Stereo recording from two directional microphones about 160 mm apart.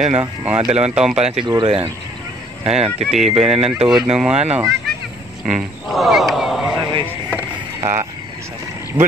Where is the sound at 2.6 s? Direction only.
40° right (ahead or behind).